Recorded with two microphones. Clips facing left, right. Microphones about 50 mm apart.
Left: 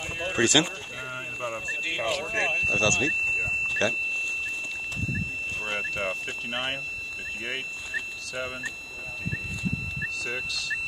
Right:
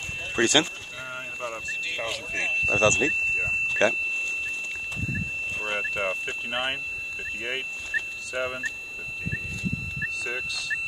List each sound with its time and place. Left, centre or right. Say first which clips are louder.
0.4 s speech: right 1 dB; centre
1.1 s a sound: left 1 dB; centre
1.7 s a sound: left 3 dB; left
2.7 s speech: right 5 dB; centre
3.1 s vehicle: right 1 dB; centre
5.6 s speech: right 2 dB; centre
7.4 s vehicle: right 1 dB; centre
10.0 s speech: right 2 dB; centre